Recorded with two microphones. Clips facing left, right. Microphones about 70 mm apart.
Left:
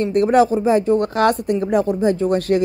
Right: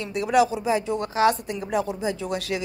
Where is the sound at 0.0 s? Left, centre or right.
Left.